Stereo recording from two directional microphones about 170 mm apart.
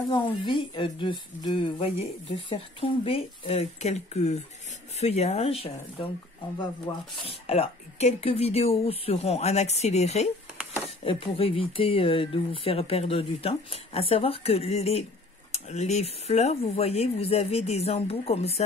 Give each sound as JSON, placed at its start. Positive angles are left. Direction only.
{"t": 0.1, "sound": "speech", "side_deg": 30}
{"t": 6.9, "sound": "speech", "side_deg": 20}
{"t": 7.2, "sound": "speech", "side_deg": 35}